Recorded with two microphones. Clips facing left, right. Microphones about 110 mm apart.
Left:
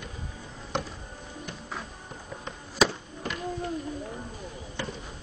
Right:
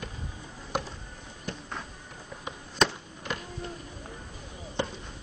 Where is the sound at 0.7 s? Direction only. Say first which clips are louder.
Even; 5° right (ahead or behind).